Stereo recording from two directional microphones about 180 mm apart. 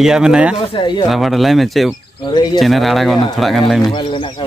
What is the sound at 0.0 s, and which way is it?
Speech, 5° right (ahead or behind).